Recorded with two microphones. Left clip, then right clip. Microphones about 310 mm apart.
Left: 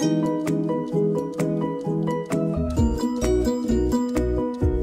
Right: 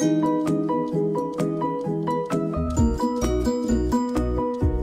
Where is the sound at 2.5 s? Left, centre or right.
Centre.